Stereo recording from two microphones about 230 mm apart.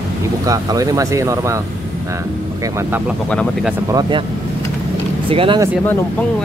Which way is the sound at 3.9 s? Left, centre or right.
Centre.